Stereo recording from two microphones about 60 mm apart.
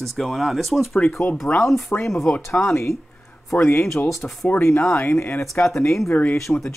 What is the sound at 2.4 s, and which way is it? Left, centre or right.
Speech, left.